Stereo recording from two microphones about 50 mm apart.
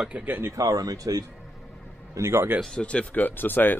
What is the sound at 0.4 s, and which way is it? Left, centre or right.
Speech, right.